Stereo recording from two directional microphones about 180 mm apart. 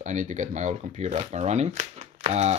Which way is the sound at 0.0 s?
45° right (ahead or behind).